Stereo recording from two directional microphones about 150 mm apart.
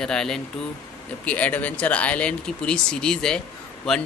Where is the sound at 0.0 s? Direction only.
5° left (ahead or behind).